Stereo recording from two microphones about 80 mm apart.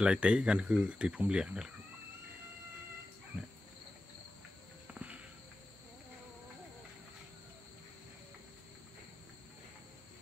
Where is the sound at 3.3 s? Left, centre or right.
Centre.